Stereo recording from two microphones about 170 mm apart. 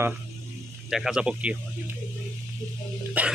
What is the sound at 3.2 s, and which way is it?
Speech, 10° right (ahead or behind).